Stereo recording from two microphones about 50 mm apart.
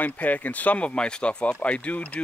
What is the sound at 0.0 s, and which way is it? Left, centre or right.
Speech, left.